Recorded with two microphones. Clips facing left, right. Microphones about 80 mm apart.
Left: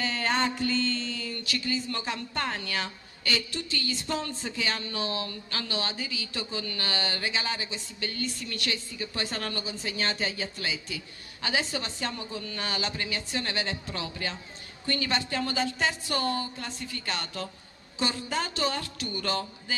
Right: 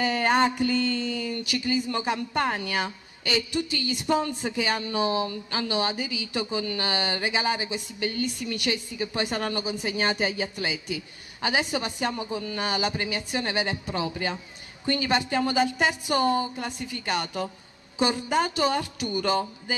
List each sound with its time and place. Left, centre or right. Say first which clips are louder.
0.0 s music: right 6 dB; centre
14.9 s a woman's voice: right 5 dB; centre